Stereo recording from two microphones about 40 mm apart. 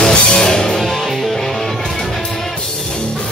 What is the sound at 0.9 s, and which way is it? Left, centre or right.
Music, centre.